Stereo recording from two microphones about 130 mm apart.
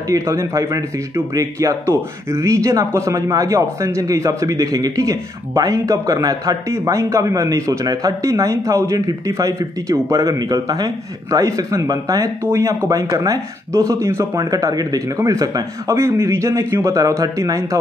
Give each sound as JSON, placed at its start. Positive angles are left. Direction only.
{"t": 0.1, "sound": "speech", "side_deg": -25}